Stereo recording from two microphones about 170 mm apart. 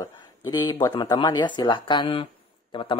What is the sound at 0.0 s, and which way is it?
Speech, 25° left (ahead or behind).